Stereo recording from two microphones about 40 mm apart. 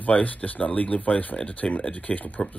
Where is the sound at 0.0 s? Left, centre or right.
Left.